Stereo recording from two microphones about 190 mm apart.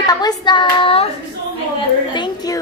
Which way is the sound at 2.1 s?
20° left (ahead or behind).